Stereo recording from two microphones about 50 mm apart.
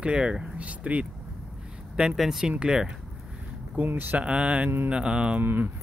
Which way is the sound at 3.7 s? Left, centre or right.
Right.